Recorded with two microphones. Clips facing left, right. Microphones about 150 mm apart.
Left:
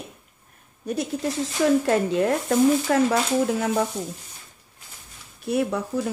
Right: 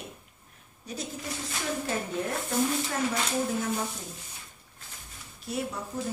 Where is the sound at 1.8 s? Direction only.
80° left.